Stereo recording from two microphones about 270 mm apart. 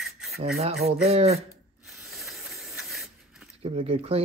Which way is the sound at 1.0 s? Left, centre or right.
Right.